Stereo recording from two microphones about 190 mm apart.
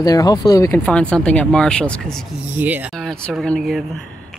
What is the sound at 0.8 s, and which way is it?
Speech, 5° left (ahead or behind).